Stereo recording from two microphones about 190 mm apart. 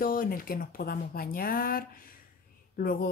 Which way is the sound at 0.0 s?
50° left (ahead or behind).